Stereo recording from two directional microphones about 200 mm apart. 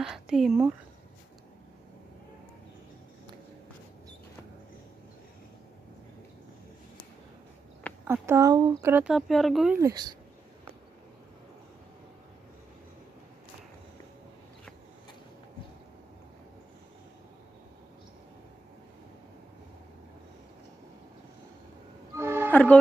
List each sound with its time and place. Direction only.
0.0 s a sound: centre (ahead or behind)
8.0 s speech: 10° right (ahead or behind)
9.8 s speech: 20° right (ahead or behind)
22.1 s music: 15° right (ahead or behind)
22.5 s music: 5° left (ahead or behind)